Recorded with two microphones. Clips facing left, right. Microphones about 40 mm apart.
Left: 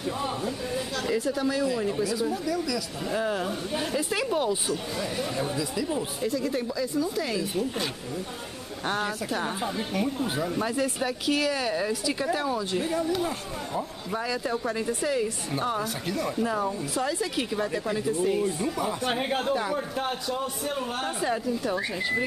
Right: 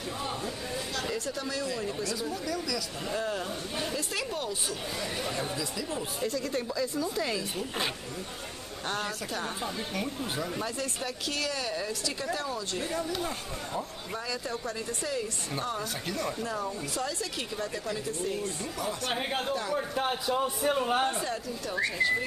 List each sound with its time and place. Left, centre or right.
0.7 s speech: centre
4.6 s speech: centre
8.8 s speech: centre
15.8 s speech: centre
16.4 s speech: centre
19.5 s speech: centre
20.0 s a man's voice: centre
21.8 s speech: centre